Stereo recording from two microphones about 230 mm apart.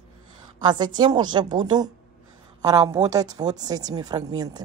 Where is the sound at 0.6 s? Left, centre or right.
Centre.